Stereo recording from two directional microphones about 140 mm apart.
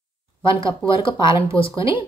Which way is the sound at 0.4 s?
35° left (ahead or behind).